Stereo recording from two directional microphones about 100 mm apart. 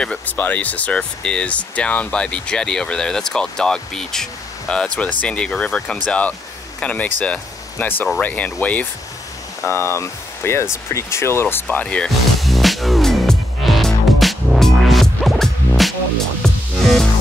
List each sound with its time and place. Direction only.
0.0 s speech: 15° left (ahead or behind)
9.6 s speech: 25° left (ahead or behind)
11.8 s music: 10° left (ahead or behind)